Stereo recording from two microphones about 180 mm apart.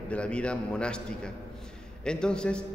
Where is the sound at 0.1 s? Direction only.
5° left (ahead or behind).